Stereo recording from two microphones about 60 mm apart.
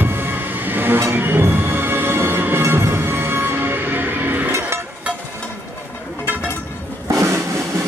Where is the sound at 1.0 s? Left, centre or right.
Right.